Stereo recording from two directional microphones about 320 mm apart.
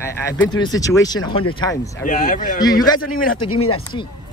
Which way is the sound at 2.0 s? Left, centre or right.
Left.